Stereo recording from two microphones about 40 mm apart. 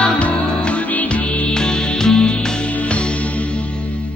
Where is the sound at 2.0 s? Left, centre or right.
Centre.